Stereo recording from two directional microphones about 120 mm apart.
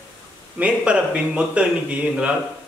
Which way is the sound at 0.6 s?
10° right (ahead or behind).